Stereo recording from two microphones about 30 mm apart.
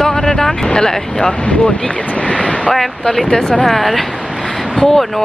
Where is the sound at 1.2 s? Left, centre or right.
Left.